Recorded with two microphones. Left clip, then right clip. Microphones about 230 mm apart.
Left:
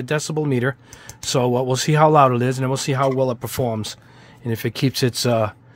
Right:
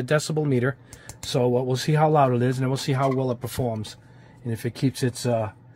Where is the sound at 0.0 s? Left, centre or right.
Centre.